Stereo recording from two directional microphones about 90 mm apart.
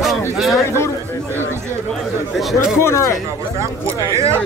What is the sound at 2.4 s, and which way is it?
Speech, 5° right (ahead or behind).